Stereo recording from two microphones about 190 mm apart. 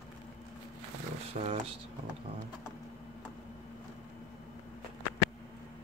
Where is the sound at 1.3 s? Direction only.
40° right (ahead or behind).